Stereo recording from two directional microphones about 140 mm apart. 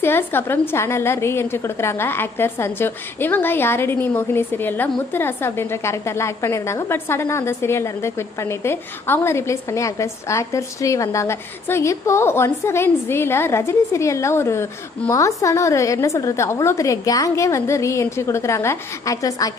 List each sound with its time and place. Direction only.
0.0 s a woman's voice: 15° left (ahead or behind)